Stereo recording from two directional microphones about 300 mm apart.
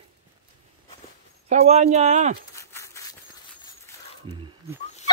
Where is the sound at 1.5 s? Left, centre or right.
Right.